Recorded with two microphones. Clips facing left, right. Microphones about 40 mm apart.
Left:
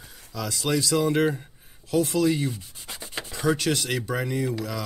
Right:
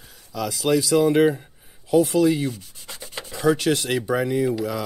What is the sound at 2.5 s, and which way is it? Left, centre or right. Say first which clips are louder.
Rub: even; centre.